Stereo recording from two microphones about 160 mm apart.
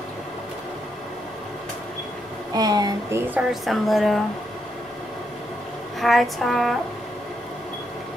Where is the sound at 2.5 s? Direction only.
25° right (ahead or behind).